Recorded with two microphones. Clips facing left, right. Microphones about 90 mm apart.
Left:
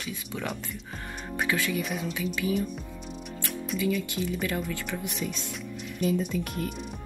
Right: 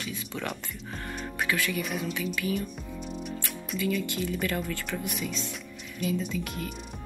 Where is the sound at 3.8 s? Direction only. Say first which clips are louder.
Even; 15° left (ahead or behind).